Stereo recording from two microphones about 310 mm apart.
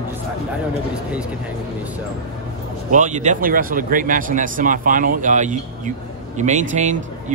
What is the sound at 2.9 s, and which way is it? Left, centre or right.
Speech, right.